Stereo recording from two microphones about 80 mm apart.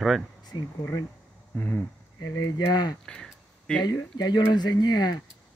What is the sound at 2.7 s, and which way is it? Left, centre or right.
Speech, left.